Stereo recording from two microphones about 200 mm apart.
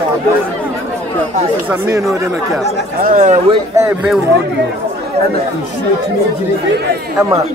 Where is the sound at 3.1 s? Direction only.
40° right (ahead or behind).